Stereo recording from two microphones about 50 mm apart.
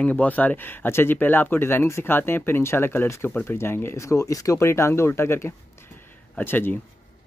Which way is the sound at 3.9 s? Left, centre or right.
Left.